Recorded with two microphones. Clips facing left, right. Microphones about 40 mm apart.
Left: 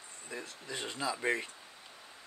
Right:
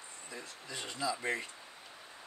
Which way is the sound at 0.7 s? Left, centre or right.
Left.